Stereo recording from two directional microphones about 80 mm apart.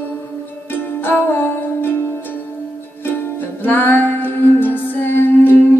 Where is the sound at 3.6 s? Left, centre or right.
Left.